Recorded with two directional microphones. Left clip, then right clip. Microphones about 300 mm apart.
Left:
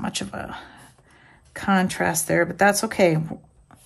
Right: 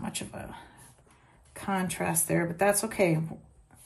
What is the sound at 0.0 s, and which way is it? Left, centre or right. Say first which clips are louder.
Speech: left 9 dB; centre.